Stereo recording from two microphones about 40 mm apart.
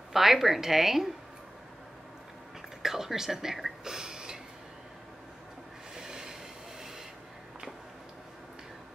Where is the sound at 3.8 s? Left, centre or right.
Centre.